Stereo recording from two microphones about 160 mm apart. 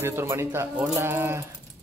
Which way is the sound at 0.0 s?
15° right (ahead or behind).